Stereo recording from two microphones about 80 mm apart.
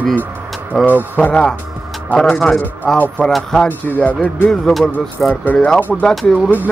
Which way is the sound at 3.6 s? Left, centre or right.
Left.